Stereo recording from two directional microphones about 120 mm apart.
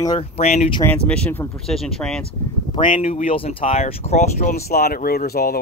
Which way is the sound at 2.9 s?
75° left (ahead or behind).